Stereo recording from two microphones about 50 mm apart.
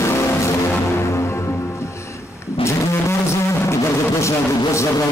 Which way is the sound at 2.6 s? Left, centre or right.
Left.